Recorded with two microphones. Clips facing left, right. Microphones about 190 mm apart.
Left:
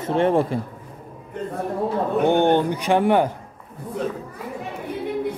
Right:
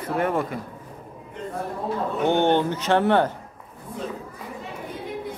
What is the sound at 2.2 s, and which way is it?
Speech, 15° left (ahead or behind).